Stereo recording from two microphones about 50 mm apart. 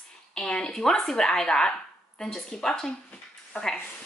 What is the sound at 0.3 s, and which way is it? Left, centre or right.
Speech, centre.